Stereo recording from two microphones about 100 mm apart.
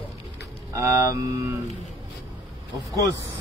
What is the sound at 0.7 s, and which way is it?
Speech, 30° right (ahead or behind).